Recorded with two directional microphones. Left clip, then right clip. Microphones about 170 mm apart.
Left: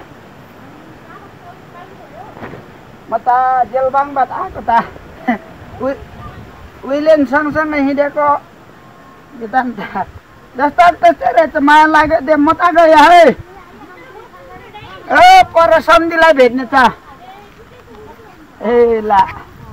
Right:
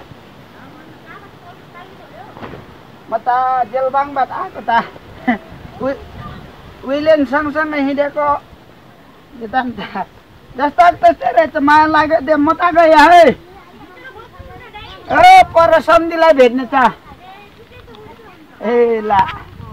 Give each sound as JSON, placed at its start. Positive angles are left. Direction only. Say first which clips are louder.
{"t": 3.1, "sound": "speech", "louder": "left 3 dB", "side_deg": -5}
{"t": 6.9, "sound": "speech", "louder": "left 2 dB", "side_deg": 5}
{"t": 9.5, "sound": "speech", "louder": "left 3 dB", "side_deg": -5}
{"t": 15.0, "sound": "a man's voice", "louder": "left 1 dB", "side_deg": -20}
{"t": 18.6, "sound": "speech", "louder": "left 2 dB", "side_deg": -10}